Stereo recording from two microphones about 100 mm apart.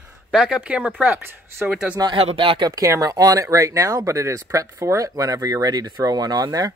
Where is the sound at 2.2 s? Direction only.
70° right (ahead or behind); by 6.7 s 45° right (ahead or behind).